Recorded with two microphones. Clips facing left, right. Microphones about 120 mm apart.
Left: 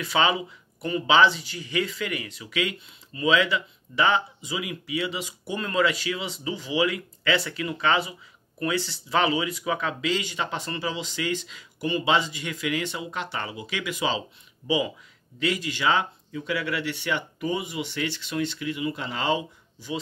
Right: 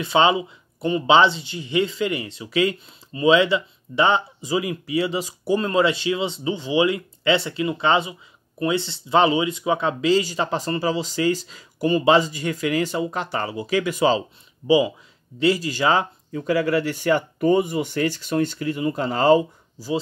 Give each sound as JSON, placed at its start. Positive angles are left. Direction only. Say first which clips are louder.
{"t": 0.0, "sound": "speech", "louder": "right 6 dB", "side_deg": -25}
{"t": 14.6, "sound": "speech", "louder": "right 8 dB", "side_deg": -30}